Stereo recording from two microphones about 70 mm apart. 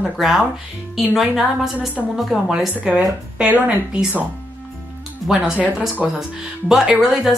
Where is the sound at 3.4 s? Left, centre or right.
Right.